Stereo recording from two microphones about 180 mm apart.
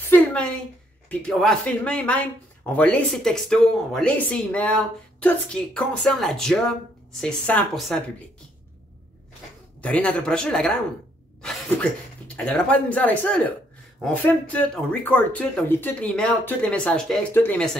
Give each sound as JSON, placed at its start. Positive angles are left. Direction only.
{"t": 0.1, "sound": "a sound", "side_deg": 5}
{"t": 1.0, "sound": "speech", "side_deg": 5}
{"t": 9.8, "sound": "speech", "side_deg": 5}
{"t": 12.4, "sound": "speech", "side_deg": 5}